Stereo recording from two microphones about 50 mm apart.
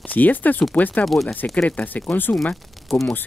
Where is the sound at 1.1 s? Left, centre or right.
Centre.